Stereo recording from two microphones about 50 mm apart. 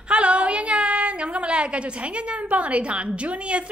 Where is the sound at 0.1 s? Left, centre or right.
Right.